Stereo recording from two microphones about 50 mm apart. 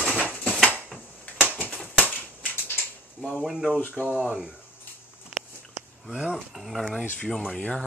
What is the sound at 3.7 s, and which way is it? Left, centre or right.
Speech, left.